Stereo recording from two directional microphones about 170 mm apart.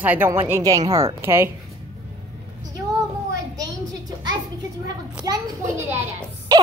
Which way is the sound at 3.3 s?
20° right (ahead or behind).